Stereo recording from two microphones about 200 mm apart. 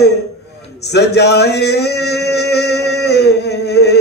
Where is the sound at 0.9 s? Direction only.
55° left (ahead or behind).